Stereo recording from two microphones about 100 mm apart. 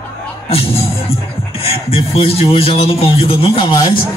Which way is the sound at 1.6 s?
75° left (ahead or behind).